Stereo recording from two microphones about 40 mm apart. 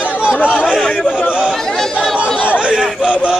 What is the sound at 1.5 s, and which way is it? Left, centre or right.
Chatter, centre.